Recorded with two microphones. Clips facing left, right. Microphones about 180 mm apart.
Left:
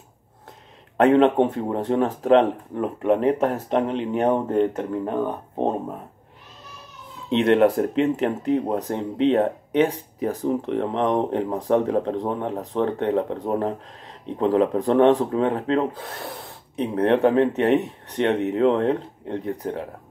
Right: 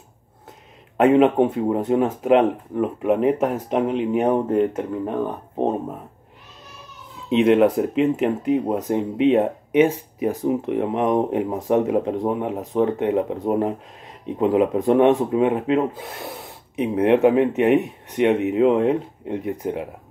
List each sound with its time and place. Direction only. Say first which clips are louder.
0.9 s speech: right 1 dB; 5° right (ahead or behind)
7.2 s speech: right 2 dB; 5° right (ahead or behind)